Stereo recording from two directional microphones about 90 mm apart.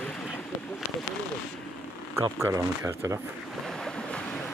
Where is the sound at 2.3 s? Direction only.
30° right (ahead or behind).